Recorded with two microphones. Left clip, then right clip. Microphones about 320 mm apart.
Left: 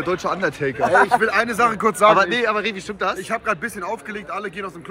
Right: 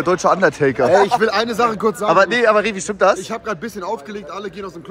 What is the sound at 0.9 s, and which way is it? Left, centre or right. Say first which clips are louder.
Speech: even; right.